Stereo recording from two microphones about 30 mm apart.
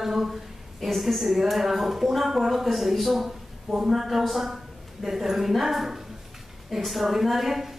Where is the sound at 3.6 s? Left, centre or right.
Centre.